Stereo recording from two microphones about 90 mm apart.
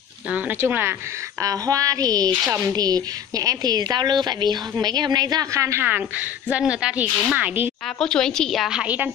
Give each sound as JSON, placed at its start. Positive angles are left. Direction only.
{"t": 0.3, "sound": "speech", "side_deg": -20}
{"t": 1.4, "sound": "speech", "side_deg": -40}
{"t": 8.0, "sound": "a woman's voice", "side_deg": 5}
{"t": 8.7, "sound": "a woman's voice", "side_deg": -15}